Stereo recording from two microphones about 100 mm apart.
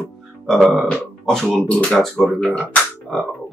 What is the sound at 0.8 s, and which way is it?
Speech, 5° left (ahead or behind).